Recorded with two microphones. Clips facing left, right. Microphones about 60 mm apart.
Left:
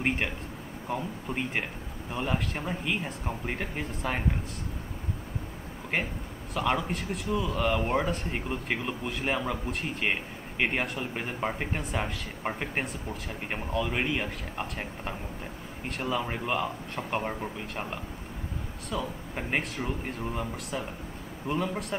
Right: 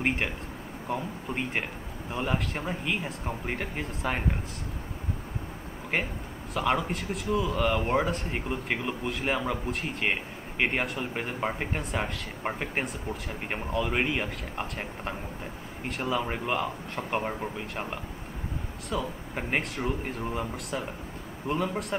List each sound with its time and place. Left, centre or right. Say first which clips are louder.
0.0 s speech: right 1 dB; centre
6.5 s speech: right 1 dB; centre